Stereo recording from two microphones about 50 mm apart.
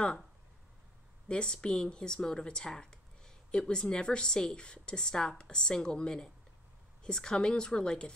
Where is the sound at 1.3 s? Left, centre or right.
Centre.